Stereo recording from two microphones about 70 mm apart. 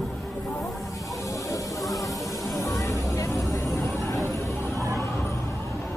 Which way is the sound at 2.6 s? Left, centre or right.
Left.